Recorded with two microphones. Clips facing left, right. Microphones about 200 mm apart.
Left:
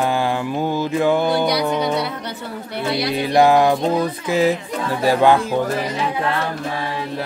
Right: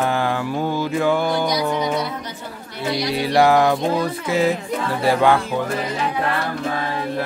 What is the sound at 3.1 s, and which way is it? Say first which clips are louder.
Music: left 1 dB; 20° left (ahead or behind).